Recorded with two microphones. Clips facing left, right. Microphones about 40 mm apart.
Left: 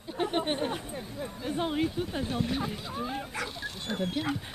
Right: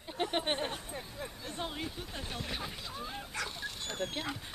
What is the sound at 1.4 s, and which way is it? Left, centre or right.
Speech, left.